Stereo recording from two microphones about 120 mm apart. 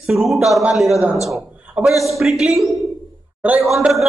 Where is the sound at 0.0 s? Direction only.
Centre (ahead or behind).